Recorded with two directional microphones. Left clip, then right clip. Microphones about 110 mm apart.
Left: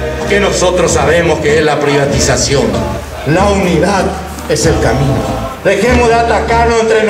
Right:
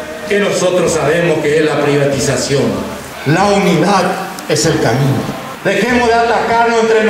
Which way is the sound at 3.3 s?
Centre (ahead or behind).